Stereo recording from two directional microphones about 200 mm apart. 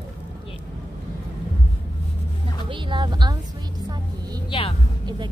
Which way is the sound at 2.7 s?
25° right (ahead or behind).